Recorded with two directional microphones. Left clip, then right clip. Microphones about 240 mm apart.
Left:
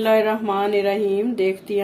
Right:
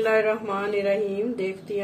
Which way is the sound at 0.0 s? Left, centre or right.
Left.